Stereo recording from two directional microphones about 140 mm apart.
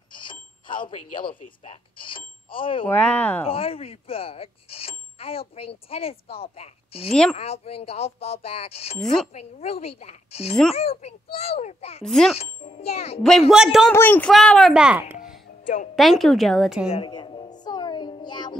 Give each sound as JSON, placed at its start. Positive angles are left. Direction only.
{"t": 0.1, "sound": "cash register", "side_deg": 35}
{"t": 2.9, "sound": "speech", "side_deg": 10}
{"t": 3.4, "sound": "speech", "side_deg": 40}
{"t": 9.0, "sound": "a woman's voice", "side_deg": 5}
{"t": 9.3, "sound": "speech", "side_deg": 50}
{"t": 12.0, "sound": "a woman's voice", "side_deg": 5}
{"t": 12.8, "sound": "speech", "side_deg": 50}
{"t": 13.5, "sound": "a woman's voice", "side_deg": -5}
{"t": 13.9, "sound": "speech", "side_deg": 15}
{"t": 14.3, "sound": "a woman's voice", "side_deg": 0}
{"t": 15.6, "sound": "a woman's voice", "side_deg": 70}
{"t": 16.0, "sound": "a woman's voice", "side_deg": 0}
{"t": 16.9, "sound": "music", "side_deg": 35}